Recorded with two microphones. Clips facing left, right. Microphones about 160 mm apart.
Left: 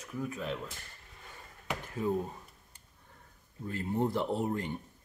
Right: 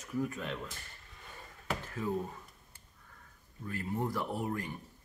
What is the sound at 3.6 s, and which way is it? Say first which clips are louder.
Speech: left 4 dB; 25° left (ahead or behind).